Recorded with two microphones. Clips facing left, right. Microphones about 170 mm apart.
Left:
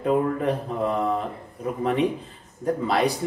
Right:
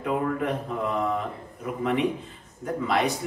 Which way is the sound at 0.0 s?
35° left (ahead or behind).